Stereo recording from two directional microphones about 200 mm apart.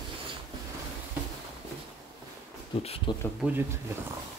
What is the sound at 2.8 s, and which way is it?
Speech, 30° left (ahead or behind).